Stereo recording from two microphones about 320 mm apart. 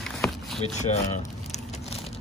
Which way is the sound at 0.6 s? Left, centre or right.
Left.